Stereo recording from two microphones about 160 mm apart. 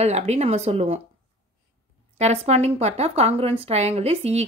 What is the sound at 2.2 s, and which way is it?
Speech, 40° right (ahead or behind).